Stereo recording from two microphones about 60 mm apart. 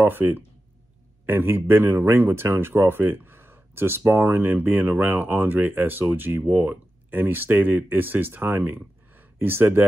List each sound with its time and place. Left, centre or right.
0.0 s speech: right